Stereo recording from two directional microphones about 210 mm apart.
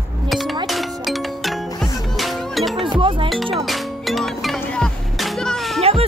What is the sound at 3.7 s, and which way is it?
Music, centre (ahead or behind).